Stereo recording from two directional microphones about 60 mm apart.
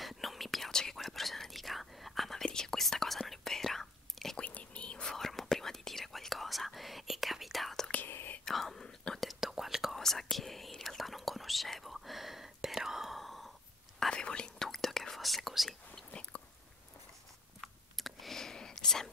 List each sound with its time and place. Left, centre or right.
0.0 s whispering: centre
4.4 s whispering: left; by 7.9 s centre
8.1 s whispering: left
8.5 s whispering: centre
13.9 s whispering: centre
14.7 s whispering: centre
15.9 s whispering: centre
17.6 s whispering: centre